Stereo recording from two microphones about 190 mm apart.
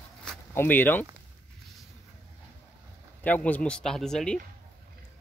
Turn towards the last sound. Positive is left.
turn(degrees=5)  # may be behind; listen again after turning